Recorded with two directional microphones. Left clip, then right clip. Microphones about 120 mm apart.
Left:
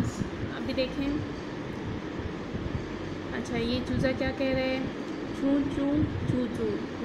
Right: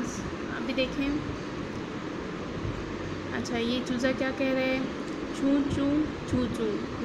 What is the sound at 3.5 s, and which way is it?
Speech, 5° right (ahead or behind).